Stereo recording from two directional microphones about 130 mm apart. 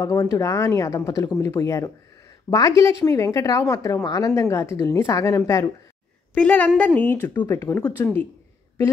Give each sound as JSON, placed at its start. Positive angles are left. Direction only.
{"t": 0.0, "sound": "a woman's voice", "side_deg": 20}
{"t": 6.3, "sound": "speech", "side_deg": 10}